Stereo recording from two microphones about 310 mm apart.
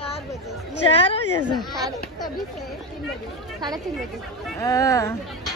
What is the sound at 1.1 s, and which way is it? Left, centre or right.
Speech, centre.